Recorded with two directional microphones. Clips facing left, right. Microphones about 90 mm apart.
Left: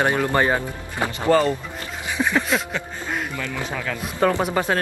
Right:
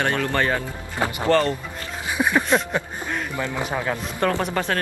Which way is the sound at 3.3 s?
20° right (ahead or behind).